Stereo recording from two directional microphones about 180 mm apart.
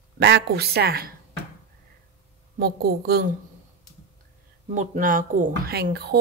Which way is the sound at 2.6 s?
60° right (ahead or behind).